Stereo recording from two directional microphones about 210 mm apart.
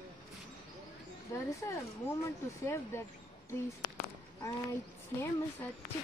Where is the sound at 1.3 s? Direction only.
15° left (ahead or behind).